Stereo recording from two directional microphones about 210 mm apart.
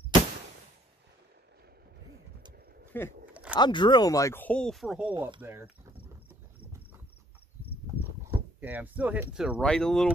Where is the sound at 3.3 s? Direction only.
5° right (ahead or behind).